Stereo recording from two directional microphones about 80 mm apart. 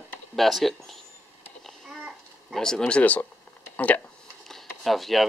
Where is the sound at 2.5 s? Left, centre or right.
Centre.